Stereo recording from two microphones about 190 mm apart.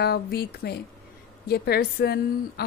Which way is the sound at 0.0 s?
55° left (ahead or behind).